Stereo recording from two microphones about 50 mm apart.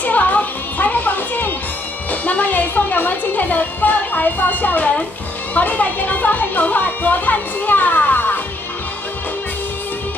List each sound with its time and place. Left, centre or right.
0.0 s music: left
5.5 s speech: left